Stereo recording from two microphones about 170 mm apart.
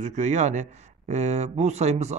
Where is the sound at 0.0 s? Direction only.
45° right (ahead or behind).